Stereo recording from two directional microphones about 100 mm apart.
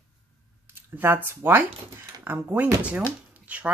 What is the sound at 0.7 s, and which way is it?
Speech, 20° right (ahead or behind).